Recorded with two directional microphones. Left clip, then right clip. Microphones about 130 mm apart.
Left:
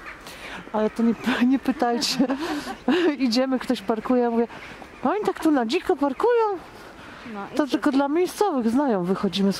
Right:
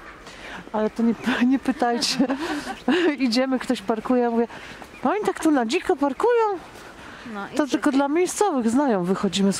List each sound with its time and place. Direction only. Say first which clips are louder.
0.5 s speech: even; 15° left (ahead or behind)
7.5 s speech: right 1 dB; centre (ahead or behind)